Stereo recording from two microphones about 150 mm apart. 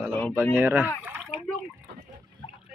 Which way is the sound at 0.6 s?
15° right (ahead or behind).